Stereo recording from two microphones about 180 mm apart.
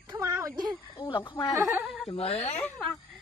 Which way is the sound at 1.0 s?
25° left (ahead or behind).